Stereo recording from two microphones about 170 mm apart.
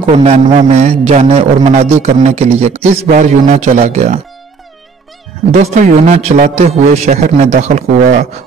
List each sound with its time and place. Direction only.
0.1 s a man's voice: 40° right (ahead or behind)
5.5 s a man's voice: 45° right (ahead or behind)